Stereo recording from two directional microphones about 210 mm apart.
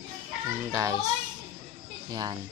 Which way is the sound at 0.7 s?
15° right (ahead or behind).